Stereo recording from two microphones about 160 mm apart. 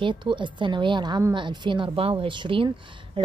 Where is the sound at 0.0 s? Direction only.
30° right (ahead or behind).